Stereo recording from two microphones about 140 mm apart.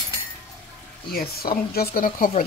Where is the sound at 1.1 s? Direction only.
90° left.